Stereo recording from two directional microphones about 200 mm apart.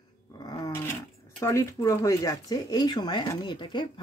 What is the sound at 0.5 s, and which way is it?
Dog, 15° left (ahead or behind).